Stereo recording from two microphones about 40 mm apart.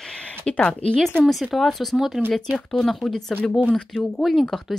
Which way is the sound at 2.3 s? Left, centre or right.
Left.